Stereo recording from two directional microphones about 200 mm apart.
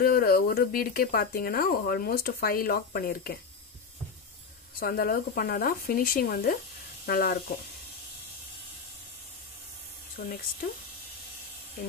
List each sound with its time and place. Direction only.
0.0 s speech: 50° left (ahead or behind)
4.7 s speech: 45° left (ahead or behind)